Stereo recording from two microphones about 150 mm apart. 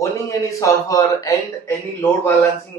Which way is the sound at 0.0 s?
20° left (ahead or behind).